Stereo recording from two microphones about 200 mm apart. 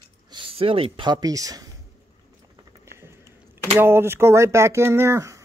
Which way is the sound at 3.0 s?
10° right (ahead or behind).